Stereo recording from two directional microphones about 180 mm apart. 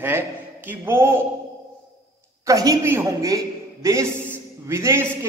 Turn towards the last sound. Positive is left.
turn(degrees=-15)  # may be behind; listen again after turning